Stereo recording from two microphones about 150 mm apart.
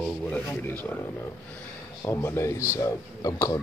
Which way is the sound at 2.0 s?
20° left (ahead or behind).